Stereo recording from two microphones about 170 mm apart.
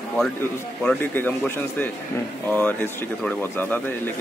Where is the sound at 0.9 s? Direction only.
10° left (ahead or behind).